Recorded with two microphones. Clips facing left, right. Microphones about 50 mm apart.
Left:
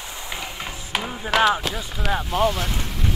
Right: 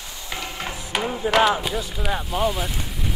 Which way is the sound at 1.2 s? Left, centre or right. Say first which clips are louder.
Even; centre.